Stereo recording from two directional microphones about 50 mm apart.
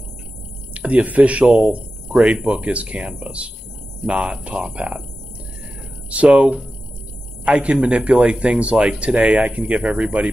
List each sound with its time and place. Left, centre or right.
0.7 s a man's voice: right
6.0 s a man's voice: right